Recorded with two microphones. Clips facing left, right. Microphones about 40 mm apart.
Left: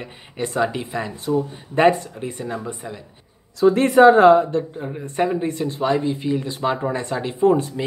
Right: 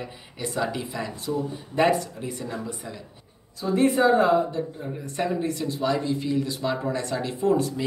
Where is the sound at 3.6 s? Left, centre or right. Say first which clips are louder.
Left 8 dB; left.